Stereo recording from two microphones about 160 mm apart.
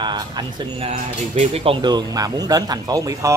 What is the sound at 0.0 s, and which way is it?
Speech, 30° right (ahead or behind).